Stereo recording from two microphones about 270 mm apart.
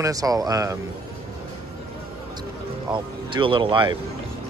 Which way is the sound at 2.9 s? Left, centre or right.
Centre.